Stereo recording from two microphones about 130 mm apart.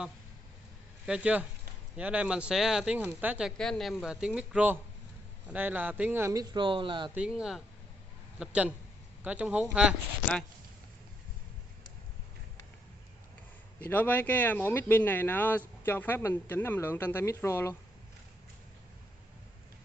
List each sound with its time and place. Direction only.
1.0 s a man's voice: 10° right (ahead or behind)
3.5 s a man's voice: 5° left (ahead or behind); by 6.3 s 15° right (ahead or behind)
6.3 s speech: 35° right (ahead or behind)
7.2 s a man's voice: 5° right (ahead or behind)
13.7 s speech: 15° left (ahead or behind)